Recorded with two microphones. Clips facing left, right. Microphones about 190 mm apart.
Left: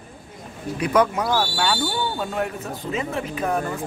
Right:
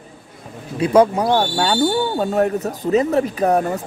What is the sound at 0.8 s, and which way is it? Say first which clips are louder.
Speech: right 6 dB; 30° right (ahead or behind).